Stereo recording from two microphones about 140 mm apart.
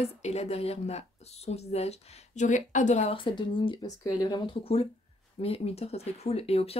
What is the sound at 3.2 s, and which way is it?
Speech, 35° left (ahead or behind).